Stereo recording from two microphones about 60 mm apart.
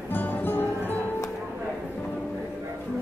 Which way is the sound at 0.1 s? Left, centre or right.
Left.